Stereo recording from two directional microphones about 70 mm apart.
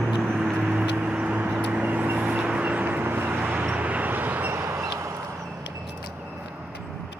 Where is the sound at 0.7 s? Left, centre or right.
Centre.